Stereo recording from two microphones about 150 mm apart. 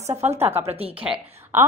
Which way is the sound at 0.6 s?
40° right (ahead or behind).